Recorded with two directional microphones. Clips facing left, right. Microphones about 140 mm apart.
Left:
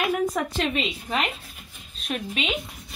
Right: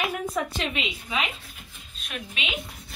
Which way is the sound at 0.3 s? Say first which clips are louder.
Left 3 dB; 40° left (ahead or behind).